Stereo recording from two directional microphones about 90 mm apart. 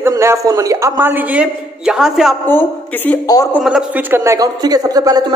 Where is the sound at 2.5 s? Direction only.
20° left (ahead or behind).